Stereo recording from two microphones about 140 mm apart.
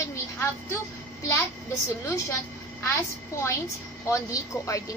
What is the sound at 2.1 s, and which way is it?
A child's voice, 20° left (ahead or behind).